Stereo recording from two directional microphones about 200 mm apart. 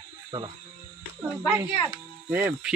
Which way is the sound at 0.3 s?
20° right (ahead or behind).